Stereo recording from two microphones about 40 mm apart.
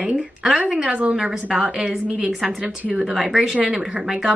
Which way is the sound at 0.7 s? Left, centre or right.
Centre.